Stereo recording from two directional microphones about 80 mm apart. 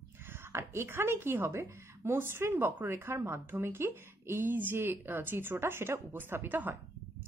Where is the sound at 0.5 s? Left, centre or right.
Right.